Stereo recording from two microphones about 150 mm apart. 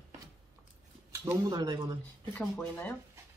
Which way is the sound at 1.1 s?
20° right (ahead or behind).